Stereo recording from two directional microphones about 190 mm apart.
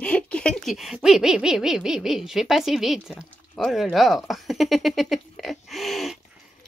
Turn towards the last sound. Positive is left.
turn(degrees=0)  # may be behind; listen again after turning